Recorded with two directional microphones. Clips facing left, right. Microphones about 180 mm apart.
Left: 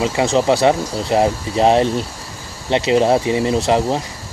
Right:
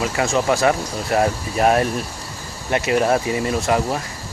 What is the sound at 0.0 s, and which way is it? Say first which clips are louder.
Speech: left 4 dB; 20° left (ahead or behind).